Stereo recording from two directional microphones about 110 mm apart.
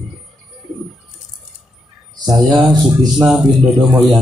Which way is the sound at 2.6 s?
10° right (ahead or behind).